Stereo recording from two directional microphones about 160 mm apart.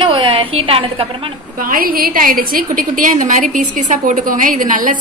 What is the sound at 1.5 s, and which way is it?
A woman's voice, 60° right (ahead or behind).